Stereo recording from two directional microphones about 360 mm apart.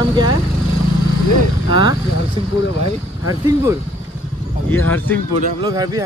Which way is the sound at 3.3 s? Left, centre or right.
Centre.